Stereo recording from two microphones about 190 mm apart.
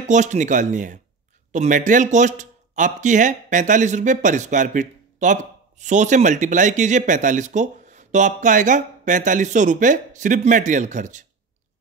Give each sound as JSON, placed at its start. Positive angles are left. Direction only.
{"t": 0.1, "sound": "speech", "side_deg": -40}